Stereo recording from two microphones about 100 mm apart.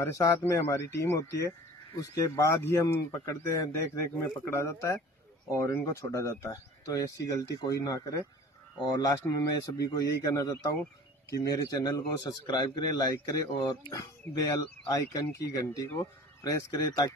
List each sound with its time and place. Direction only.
0.0 s speech: 30° left (ahead or behind)